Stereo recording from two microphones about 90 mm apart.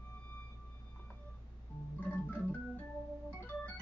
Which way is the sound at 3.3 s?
20° left (ahead or behind).